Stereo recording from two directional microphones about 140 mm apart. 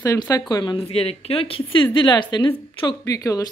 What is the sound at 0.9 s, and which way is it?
A woman's voice, 45° left (ahead or behind).